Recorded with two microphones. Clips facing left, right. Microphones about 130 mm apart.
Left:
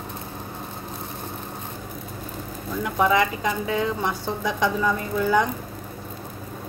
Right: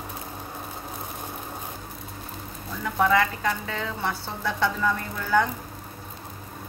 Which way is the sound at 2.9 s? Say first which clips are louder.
Left 1 dB; 15° left (ahead or behind).